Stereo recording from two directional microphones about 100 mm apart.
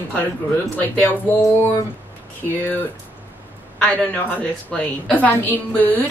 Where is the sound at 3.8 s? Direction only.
15° left (ahead or behind).